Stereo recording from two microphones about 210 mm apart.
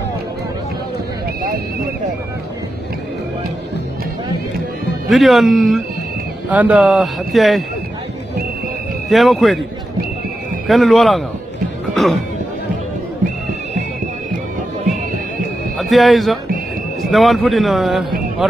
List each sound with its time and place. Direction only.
5.1 s speech: centre (ahead or behind)
9.1 s speech: centre (ahead or behind)
10.7 s speech: centre (ahead or behind)
15.8 s speech: centre (ahead or behind)